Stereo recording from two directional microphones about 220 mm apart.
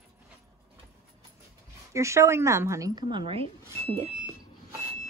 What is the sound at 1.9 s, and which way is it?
Speech, 15° right (ahead or behind).